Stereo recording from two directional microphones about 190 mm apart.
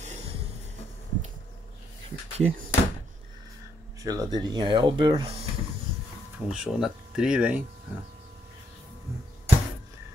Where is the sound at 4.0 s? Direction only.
20° right (ahead or behind).